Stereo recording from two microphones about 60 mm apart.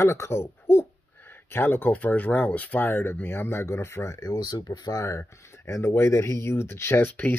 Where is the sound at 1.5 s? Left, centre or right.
Left.